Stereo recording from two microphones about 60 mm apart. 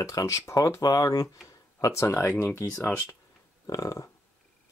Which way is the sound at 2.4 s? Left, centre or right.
Left.